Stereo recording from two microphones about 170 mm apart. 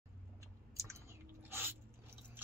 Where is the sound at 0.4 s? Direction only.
15° right (ahead or behind).